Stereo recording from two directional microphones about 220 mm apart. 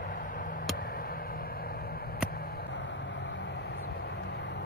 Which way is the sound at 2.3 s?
45° left (ahead or behind).